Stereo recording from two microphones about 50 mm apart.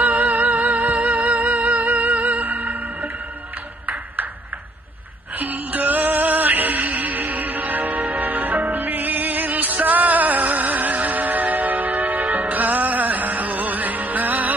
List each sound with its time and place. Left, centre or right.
0.0 s music: right
5.3 s music: right